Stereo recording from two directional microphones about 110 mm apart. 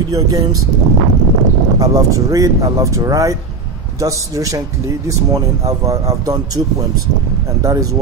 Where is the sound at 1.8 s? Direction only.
30° right (ahead or behind).